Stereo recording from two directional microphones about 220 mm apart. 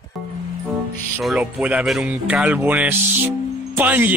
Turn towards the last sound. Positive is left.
turn(degrees=-10)  # may be behind; listen again after turning